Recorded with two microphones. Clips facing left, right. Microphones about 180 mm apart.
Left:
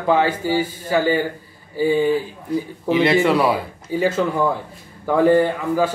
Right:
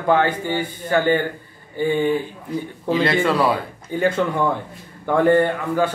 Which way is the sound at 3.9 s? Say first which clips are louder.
Left 1 dB; 5° left (ahead or behind).